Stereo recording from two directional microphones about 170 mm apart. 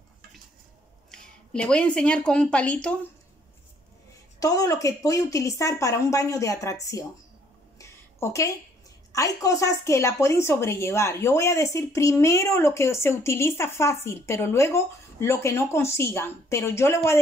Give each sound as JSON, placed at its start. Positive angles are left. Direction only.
{"t": 1.1, "sound": "speech", "side_deg": 5}
{"t": 4.4, "sound": "a woman's voice", "side_deg": 20}
{"t": 7.8, "sound": "a sound", "side_deg": 15}
{"t": 9.1, "sound": "a woman's voice", "side_deg": 20}